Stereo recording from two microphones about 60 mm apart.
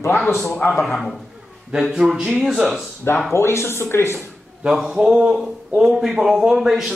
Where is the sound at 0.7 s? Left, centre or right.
Centre.